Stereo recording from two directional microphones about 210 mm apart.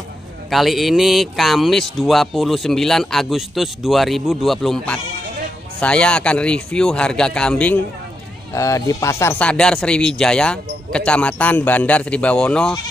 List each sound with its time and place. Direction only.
0.5 s speech: centre (ahead or behind)